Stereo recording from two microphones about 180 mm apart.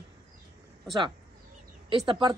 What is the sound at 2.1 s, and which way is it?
Speech, 25° right (ahead or behind).